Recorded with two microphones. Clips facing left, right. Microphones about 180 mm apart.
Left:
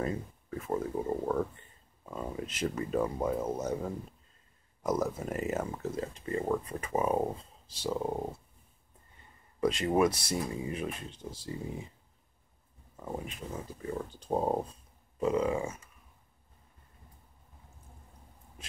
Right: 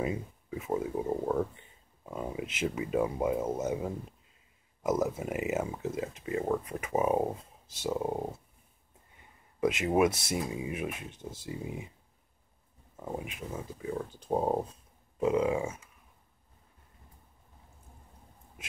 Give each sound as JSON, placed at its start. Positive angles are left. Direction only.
{"t": 0.0, "sound": "speech", "side_deg": -10}
{"t": 9.7, "sound": "speech", "side_deg": -5}
{"t": 10.0, "sound": "speech", "side_deg": -20}
{"t": 10.3, "sound": "speech", "side_deg": -10}
{"t": 11.4, "sound": "speech", "side_deg": -10}
{"t": 12.9, "sound": "speech", "side_deg": -5}